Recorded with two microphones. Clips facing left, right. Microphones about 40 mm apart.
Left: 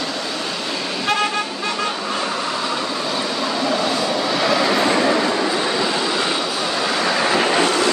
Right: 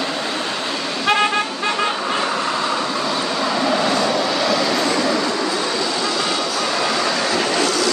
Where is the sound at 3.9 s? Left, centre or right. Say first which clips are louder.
Right 2 dB; centre.